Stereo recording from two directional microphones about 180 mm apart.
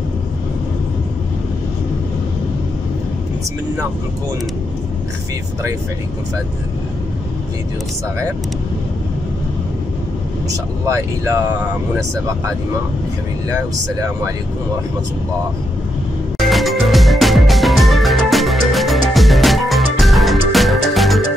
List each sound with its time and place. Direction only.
10.5 s speech: 15° right (ahead or behind)
16.3 s music: centre (ahead or behind)